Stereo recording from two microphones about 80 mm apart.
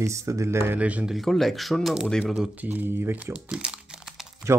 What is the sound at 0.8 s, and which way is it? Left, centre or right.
Speech, centre.